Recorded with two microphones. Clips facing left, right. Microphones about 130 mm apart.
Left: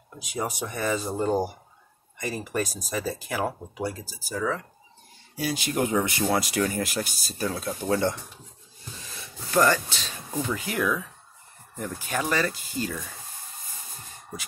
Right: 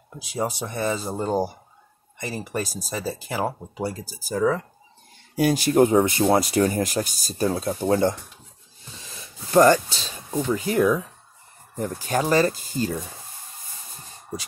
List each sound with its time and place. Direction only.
0.2 s speech: 30° right (ahead or behind)
4.0 s speech: 40° right (ahead or behind)